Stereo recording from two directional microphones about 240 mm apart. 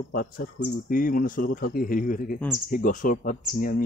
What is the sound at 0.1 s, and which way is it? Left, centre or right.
Speech, left.